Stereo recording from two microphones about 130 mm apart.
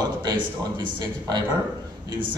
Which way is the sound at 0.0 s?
30° right (ahead or behind).